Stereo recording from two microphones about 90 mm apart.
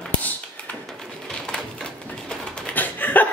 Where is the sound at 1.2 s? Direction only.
5° left (ahead or behind).